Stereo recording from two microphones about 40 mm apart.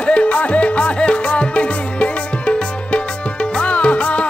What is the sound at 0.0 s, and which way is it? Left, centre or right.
Music, left.